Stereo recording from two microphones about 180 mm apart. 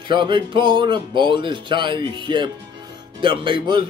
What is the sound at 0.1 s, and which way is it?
Speech, 25° right (ahead or behind).